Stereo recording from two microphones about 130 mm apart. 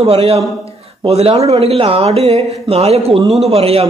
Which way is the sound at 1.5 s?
50° right (ahead or behind).